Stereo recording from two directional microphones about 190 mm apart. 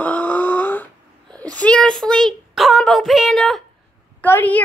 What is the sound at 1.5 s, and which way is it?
Speech, 5° left (ahead or behind).